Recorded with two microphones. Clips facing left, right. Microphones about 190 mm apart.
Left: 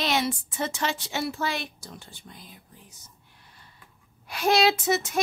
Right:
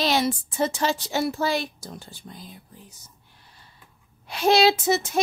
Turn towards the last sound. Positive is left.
turn(degrees=-30)  # may be behind; listen again after turning